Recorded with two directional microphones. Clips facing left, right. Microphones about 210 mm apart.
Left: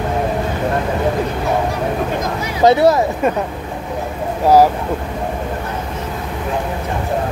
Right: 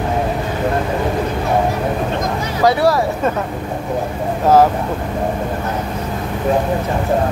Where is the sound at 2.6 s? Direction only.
20° left (ahead or behind).